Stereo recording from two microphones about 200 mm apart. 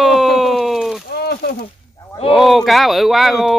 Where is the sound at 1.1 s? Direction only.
55° left (ahead or behind).